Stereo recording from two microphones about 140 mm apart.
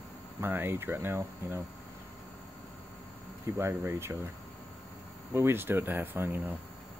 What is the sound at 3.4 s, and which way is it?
Speech, 20° right (ahead or behind).